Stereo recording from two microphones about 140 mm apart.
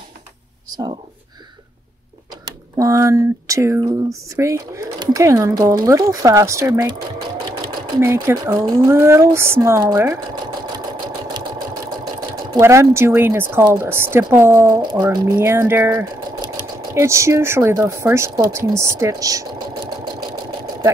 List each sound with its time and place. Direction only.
2.4 s speech: 25° right (ahead or behind)
8.0 s speech: 15° right (ahead or behind)
12.5 s speech: 20° right (ahead or behind)